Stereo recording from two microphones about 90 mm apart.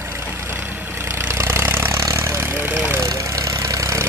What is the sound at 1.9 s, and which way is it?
Vehicle, 35° right (ahead or behind).